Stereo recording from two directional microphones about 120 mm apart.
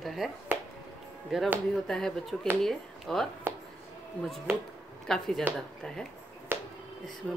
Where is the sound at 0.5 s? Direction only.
15° right (ahead or behind).